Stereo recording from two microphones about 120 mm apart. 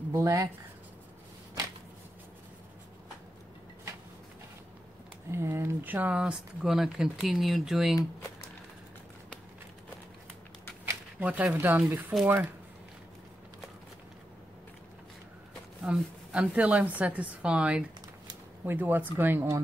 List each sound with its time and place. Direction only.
0.1 s speech: 25° right (ahead or behind)
5.3 s speech: 20° right (ahead or behind); by 8.0 s 5° right (ahead or behind)
10.9 s shuffling cards: 15° right (ahead or behind)
11.5 s a woman's voice: 15° right (ahead or behind)
15.8 s a woman's voice: 5° right (ahead or behind)